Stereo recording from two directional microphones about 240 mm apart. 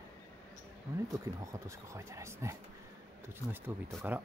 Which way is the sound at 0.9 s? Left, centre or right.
Centre.